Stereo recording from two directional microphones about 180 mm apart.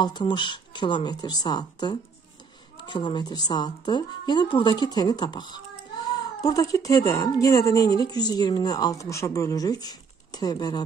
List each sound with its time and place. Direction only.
0.0 s speech: 25° left (ahead or behind)